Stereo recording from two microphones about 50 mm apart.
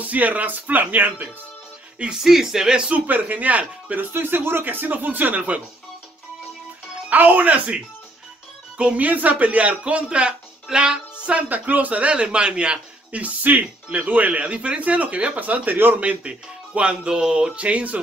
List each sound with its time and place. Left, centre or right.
0.0 s speech: right
2.1 s speech: centre
2.9 s speech: right
4.1 s speech: right
7.1 s speech: right
9.0 s speech: right; by 11.0 s centre
11.2 s speech: right